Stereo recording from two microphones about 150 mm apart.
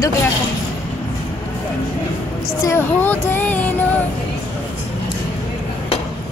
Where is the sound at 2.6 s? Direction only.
15° left (ahead or behind).